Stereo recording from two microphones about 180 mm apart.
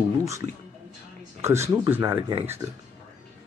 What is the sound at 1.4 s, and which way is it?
Speech, 15° right (ahead or behind).